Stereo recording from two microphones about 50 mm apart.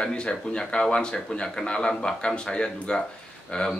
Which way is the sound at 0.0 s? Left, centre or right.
Centre.